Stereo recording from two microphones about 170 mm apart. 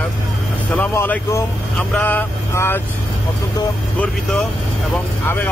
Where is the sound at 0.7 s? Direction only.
15° left (ahead or behind).